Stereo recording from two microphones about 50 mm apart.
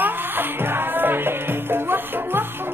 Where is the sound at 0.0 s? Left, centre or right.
Right.